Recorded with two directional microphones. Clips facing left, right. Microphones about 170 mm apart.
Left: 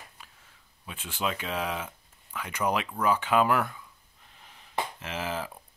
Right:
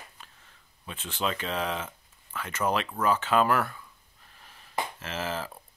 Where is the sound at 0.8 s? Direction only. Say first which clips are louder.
Right 1 dB; 10° left (ahead or behind).